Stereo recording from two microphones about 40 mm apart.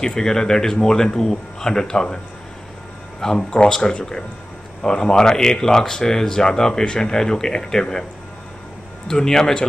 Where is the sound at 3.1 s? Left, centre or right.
Centre.